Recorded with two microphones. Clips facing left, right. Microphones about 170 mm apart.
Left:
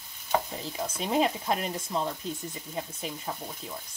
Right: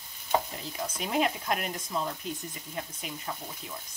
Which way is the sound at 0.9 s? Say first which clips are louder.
Left 2 dB; 30° left (ahead or behind).